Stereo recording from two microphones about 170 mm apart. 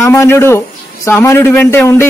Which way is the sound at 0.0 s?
15° left (ahead or behind).